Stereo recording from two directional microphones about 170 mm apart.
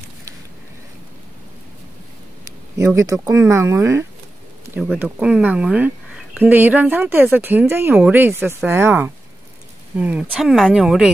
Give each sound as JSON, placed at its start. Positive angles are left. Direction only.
{"t": 2.8, "sound": "speech", "side_deg": -15}
{"t": 5.2, "sound": "speech", "side_deg": -5}